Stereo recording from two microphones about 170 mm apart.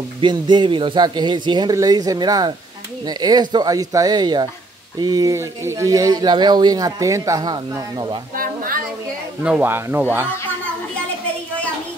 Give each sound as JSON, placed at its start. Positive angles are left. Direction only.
{"t": 0.2, "sound": "speech", "side_deg": -25}
{"t": 8.4, "sound": "a sound", "side_deg": -55}
{"t": 9.4, "sound": "speech", "side_deg": -10}